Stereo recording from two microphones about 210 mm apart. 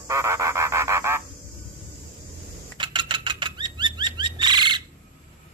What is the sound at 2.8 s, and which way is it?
Bird flight, 25° right (ahead or behind).